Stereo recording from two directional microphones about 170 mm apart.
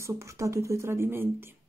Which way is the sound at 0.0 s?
15° right (ahead or behind).